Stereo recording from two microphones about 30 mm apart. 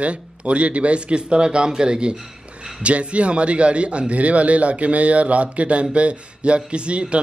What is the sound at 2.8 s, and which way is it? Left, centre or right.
A man's voice, right.